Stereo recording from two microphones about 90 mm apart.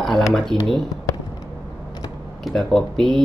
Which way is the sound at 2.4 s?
5° left (ahead or behind).